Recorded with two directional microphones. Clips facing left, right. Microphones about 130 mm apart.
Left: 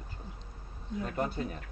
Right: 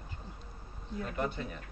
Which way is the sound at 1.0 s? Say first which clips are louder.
Left 2 dB; 35° left (ahead or behind).